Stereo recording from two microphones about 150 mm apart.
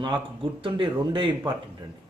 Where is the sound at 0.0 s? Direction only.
35° right (ahead or behind).